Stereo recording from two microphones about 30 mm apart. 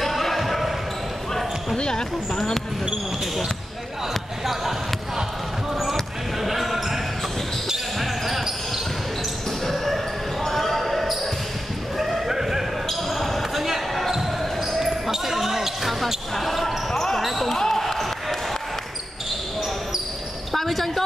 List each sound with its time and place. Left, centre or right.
0.0 s basketball bounce: centre
1.8 s speech: left
2.3 s speech: centre
4.5 s basketball bounce: centre
6.4 s basketball bounce: centre
8.0 s basketball bounce: centre
10.4 s basketball bounce: centre
12.3 s a sound: centre
13.1 s basketball bounce: centre
16.3 s basketball bounce: centre
16.9 s basketball bounce: centre
17.2 s basketball bounce: centre
17.5 s basketball bounce: centre
20.5 s a sound: centre